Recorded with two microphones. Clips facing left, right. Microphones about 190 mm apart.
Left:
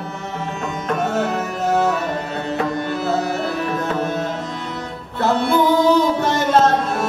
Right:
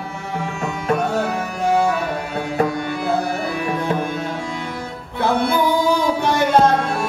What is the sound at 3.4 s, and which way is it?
Music, 10° right (ahead or behind).